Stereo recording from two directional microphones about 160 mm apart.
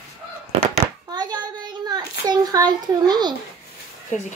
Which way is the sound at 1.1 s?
25° right (ahead or behind).